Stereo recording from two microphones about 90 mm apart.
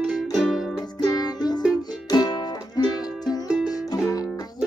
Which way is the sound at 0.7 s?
45° left (ahead or behind).